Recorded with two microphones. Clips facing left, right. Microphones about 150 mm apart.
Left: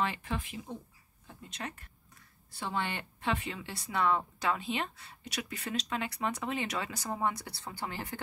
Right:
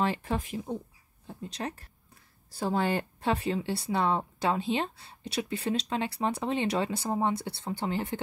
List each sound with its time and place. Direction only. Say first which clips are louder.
0.0 s speech: right 5 dB; 35° right (ahead or behind)